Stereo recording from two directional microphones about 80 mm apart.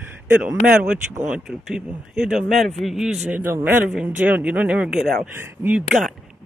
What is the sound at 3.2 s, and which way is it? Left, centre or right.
Speech, right.